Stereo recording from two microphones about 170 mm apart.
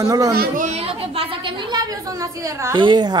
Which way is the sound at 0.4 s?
50° right (ahead or behind).